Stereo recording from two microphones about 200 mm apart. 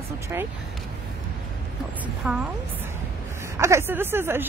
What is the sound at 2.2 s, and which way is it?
Speech, 5° right (ahead or behind).